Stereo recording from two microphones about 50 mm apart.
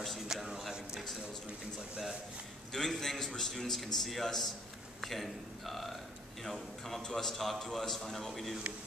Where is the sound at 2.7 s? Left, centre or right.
Centre.